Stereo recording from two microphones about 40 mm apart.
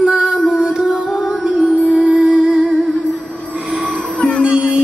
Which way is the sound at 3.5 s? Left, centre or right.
Right.